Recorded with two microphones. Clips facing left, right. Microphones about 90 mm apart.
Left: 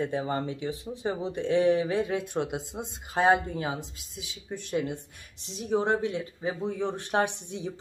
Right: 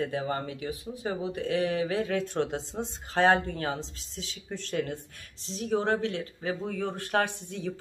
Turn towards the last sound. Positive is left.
turn(degrees=20)  # may be behind; listen again after turning